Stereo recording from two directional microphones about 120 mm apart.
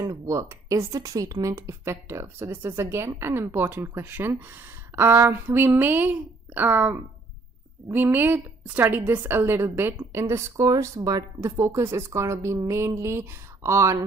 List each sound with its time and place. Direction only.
0.0 s a woman's voice: 30° right (ahead or behind)